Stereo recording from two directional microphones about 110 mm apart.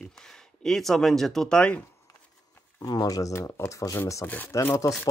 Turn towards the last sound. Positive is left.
turn(degrees=25)  # may be behind; listen again after turning